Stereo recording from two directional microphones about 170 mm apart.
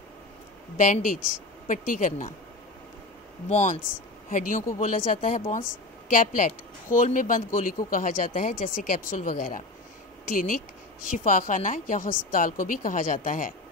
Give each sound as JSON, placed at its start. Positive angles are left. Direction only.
{"t": 0.7, "sound": "a woman's voice", "side_deg": 50}
{"t": 3.4, "sound": "speech", "side_deg": 40}
{"t": 4.3, "sound": "a woman's voice", "side_deg": 50}